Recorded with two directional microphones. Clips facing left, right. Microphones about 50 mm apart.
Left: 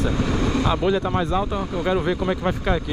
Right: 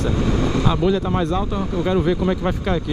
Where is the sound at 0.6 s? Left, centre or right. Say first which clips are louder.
Right 2 dB; centre.